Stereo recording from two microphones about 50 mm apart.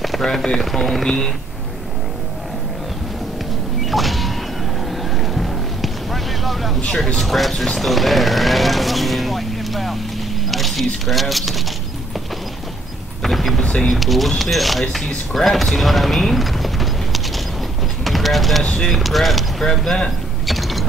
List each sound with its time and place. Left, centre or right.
0.0 s speech: centre
3.8 s power windows: centre
5.3 s vehicle: centre
7.2 s speech: centre
10.5 s single-lens reflex camera: centre
11.1 s speech: centre
13.2 s power windows: centre
13.6 s speech: centre
13.9 s speech: centre
18.0 s a sound: centre
18.6 s speech: centre
18.9 s speech: centre